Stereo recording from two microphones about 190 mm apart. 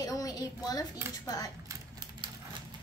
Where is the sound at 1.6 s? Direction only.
20° right (ahead or behind).